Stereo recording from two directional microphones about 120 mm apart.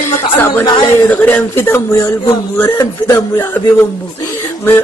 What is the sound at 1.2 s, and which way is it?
Speech, 20° left (ahead or behind).